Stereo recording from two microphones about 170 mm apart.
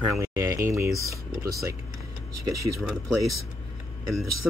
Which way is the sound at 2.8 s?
Centre (ahead or behind).